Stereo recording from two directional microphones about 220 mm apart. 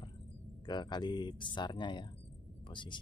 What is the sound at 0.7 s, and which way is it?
Speech, 20° left (ahead or behind).